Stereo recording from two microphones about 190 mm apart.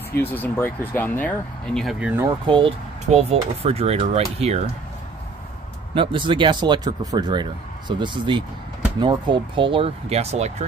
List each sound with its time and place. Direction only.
0.1 s speech: 10° left (ahead or behind); by 2.2 s 5° right (ahead or behind)
2.2 s speech: 25° right (ahead or behind)
5.9 s speech: 25° right (ahead or behind)